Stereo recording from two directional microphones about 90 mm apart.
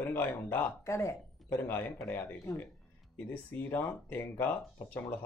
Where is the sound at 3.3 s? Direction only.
20° left (ahead or behind).